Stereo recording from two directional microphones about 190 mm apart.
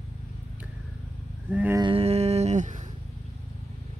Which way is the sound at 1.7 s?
25° right (ahead or behind).